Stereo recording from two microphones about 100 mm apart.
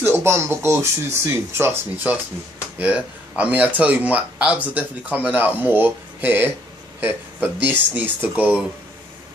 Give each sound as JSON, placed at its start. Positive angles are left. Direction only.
{"t": 0.0, "sound": "speech", "side_deg": -25}
{"t": 2.8, "sound": "speech", "side_deg": -15}